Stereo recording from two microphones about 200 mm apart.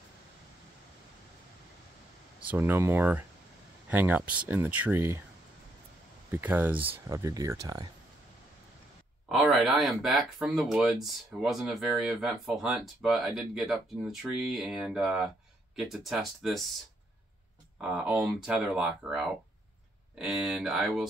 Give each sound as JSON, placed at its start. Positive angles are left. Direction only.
{"t": 2.5, "sound": "speech", "side_deg": -10}
{"t": 6.3, "sound": "speech", "side_deg": -10}
{"t": 9.3, "sound": "speech", "side_deg": 0}
{"t": 17.7, "sound": "speech", "side_deg": -5}